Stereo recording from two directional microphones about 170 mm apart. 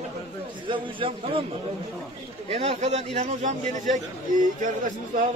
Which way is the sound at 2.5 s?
35° right (ahead or behind).